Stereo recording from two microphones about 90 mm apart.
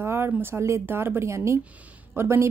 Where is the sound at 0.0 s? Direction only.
25° right (ahead or behind).